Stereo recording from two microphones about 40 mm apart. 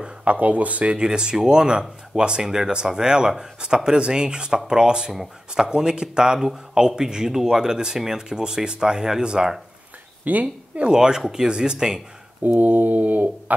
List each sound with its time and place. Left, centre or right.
0.0 s speech: right
0.9 s speech: right
10.2 s mantra: right
10.9 s speech: centre
12.4 s mantra: right